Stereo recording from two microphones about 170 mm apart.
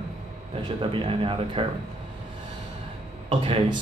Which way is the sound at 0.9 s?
30° right (ahead or behind).